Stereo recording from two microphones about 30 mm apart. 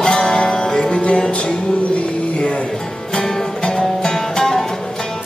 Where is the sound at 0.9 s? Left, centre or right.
Left.